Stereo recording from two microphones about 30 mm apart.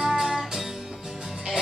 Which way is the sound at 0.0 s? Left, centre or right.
Centre.